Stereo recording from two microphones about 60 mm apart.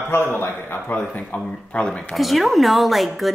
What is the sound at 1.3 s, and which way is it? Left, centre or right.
Speech, left.